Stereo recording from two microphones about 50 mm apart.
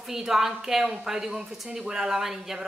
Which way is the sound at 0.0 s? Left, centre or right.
Centre.